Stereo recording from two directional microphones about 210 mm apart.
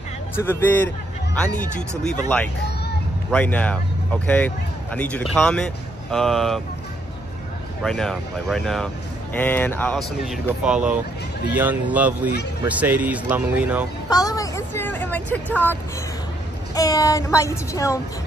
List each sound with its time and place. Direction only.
0.4 s speech: 10° left (ahead or behind)
4.9 s speech: 5° left (ahead or behind)
7.8 s speech: centre (ahead or behind)
14.1 s speech: 15° left (ahead or behind)